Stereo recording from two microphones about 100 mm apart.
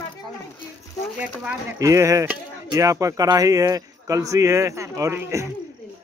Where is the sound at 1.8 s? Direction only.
35° right (ahead or behind).